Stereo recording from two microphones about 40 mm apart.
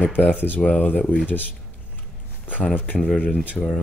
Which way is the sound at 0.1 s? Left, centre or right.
Left.